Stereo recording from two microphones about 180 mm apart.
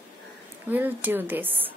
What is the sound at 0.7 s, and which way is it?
Speech, 10° right (ahead or behind).